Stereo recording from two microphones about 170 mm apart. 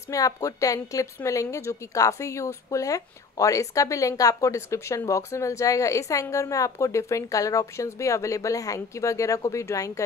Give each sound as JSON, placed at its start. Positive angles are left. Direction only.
{"t": 0.1, "sound": "a woman's voice", "side_deg": 20}